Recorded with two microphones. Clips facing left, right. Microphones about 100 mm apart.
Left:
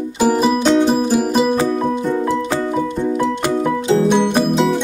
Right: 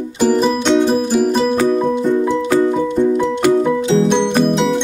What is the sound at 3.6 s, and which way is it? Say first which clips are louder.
Music: right 1 dB; centre (ahead or behind).